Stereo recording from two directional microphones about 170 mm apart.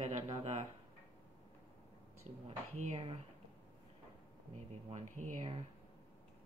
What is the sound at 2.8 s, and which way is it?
Speech, 40° right (ahead or behind).